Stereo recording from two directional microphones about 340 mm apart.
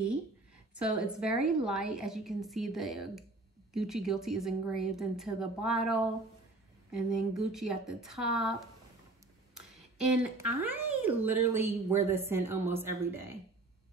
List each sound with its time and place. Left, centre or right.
0.7 s a woman's voice: centre